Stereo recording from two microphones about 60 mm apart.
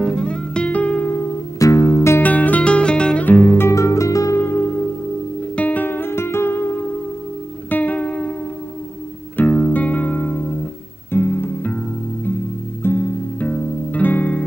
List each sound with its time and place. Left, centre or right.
0.0 s guitar: centre
1.6 s music: left
2.2 s music: left
3.3 s music: left
3.7 s music: left
4.4 s music: left
5.6 s music: left
7.7 s music: left
9.4 s music: left
12.8 s music: left